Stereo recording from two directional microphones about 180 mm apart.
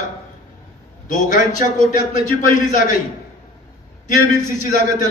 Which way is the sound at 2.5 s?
45° left (ahead or behind).